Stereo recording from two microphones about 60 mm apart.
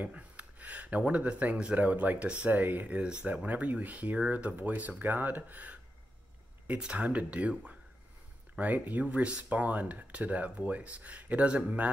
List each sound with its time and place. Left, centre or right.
0.0 s speech: right
6.8 s speech: right